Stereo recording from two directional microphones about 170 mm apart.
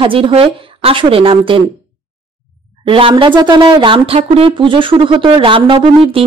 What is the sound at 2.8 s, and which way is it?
A woman's voice, 30° right (ahead or behind).